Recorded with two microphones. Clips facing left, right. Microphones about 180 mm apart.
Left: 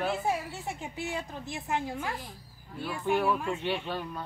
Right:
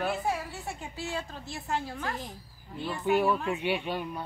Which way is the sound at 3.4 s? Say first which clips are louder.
Right 2 dB; 10° right (ahead or behind).